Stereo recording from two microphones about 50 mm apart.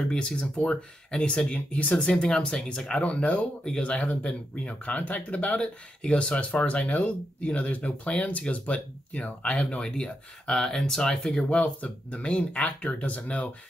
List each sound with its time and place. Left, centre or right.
0.0 s speech: centre; by 13.5 s left